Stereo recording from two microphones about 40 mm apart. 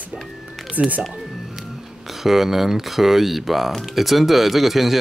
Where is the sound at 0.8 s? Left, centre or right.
Right.